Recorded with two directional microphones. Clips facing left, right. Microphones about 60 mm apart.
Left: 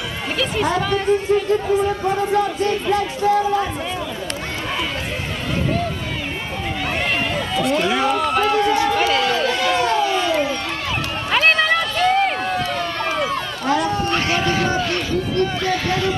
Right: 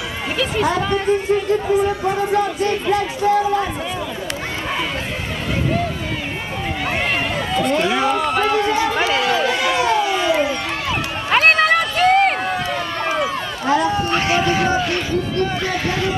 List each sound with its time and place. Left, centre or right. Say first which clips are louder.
0.4 s speech: right 1 dB; centre
7.3 s speech: right 2 dB; centre
9.2 s a sound: right 1 dB; centre
11.2 s run: right 2 dB; right
11.6 s a sound: right 3 dB; right
12.4 s run: even; right